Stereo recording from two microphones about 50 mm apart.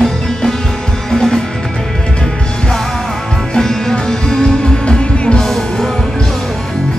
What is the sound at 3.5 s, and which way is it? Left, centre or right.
Music, centre.